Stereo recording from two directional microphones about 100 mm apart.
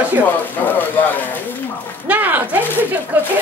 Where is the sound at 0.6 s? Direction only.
20° left (ahead or behind).